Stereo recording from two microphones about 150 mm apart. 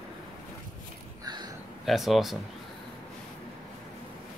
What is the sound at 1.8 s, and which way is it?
Speech, centre (ahead or behind).